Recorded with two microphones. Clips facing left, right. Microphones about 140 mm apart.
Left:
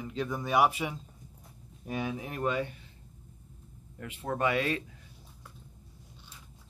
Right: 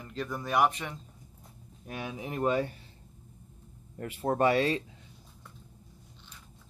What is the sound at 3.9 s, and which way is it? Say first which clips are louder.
Speech: right 5 dB; 40° right (ahead or behind).